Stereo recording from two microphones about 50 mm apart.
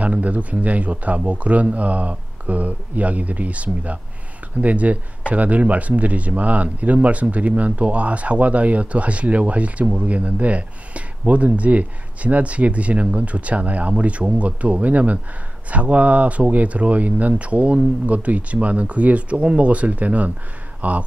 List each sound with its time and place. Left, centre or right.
0.0 s speech: right